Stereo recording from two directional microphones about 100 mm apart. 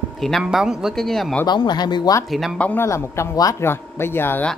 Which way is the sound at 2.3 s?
Centre (ahead or behind).